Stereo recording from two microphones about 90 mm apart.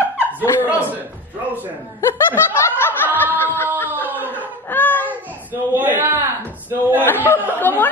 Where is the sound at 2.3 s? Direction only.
25° left (ahead or behind).